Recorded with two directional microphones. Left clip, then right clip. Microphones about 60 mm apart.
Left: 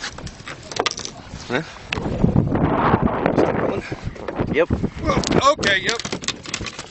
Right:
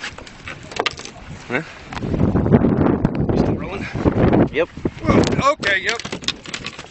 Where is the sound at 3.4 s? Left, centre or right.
Right.